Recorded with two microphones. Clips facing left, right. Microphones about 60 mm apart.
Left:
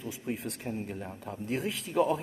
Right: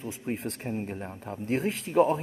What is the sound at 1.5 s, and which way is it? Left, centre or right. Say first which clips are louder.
Speech: right 5 dB; right.